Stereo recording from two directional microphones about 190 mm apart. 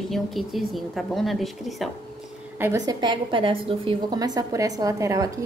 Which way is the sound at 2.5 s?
15° right (ahead or behind).